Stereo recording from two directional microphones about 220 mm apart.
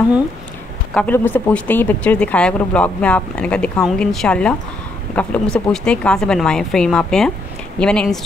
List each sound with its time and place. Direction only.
0.9 s speech: 10° left (ahead or behind)